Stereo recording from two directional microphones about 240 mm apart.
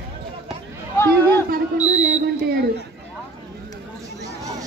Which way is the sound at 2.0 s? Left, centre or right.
Right.